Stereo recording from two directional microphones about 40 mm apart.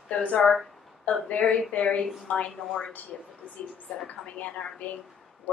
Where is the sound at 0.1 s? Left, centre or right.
Left.